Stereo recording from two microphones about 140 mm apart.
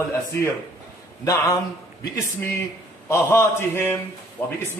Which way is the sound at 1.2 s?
25° left (ahead or behind).